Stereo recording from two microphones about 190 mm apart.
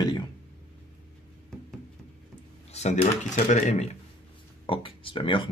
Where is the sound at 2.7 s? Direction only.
35° left (ahead or behind).